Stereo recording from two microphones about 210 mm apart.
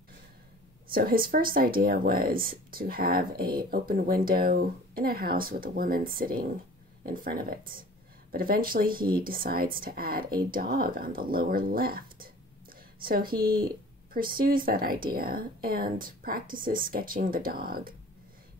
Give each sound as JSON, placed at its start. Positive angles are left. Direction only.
{"t": 0.9, "sound": "speech", "side_deg": -45}